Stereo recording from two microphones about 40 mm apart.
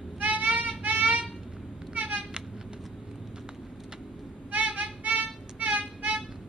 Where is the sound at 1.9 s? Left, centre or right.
Right.